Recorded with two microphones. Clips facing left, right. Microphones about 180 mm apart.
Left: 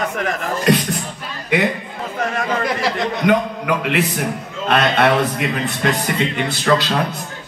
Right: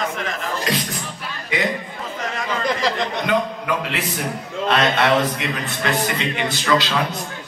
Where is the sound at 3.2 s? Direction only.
60° left (ahead or behind).